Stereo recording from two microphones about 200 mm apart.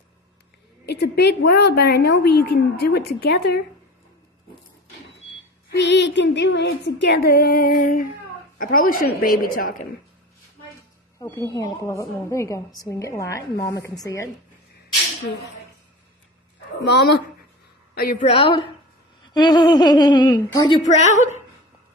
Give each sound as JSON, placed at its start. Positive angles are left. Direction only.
{"t": 0.8, "sound": "a woman's voice", "side_deg": 55}
{"t": 5.7, "sound": "a woman's voice", "side_deg": 60}
{"t": 11.1, "sound": "a woman's voice", "side_deg": 15}
{"t": 16.8, "sound": "speech", "side_deg": 55}
{"t": 17.9, "sound": "a woman's voice", "side_deg": 40}
{"t": 19.3, "sound": "a sound", "side_deg": 20}
{"t": 20.4, "sound": "a woman's voice", "side_deg": 20}
{"t": 20.9, "sound": "a woman's voice", "side_deg": 35}